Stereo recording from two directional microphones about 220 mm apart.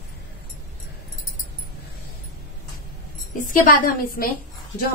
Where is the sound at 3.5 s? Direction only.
40° left (ahead or behind).